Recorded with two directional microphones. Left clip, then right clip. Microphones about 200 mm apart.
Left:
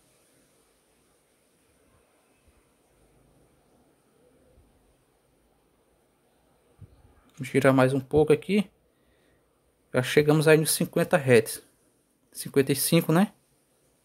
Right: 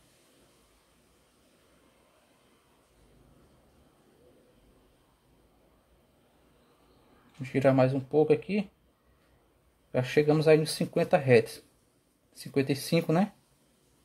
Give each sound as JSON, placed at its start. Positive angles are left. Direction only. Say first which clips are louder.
{"t": 7.4, "sound": "speech", "louder": "left 3 dB", "side_deg": 35}
{"t": 9.8, "sound": "speech", "louder": "left 3 dB", "side_deg": 35}